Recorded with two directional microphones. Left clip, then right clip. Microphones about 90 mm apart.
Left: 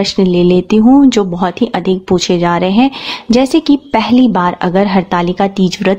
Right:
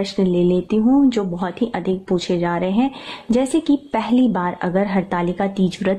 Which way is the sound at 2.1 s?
40° left (ahead or behind).